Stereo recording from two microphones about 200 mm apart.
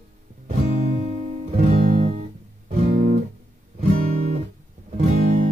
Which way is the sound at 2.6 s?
35° right (ahead or behind).